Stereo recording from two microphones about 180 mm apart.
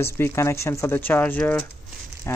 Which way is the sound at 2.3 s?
15° left (ahead or behind).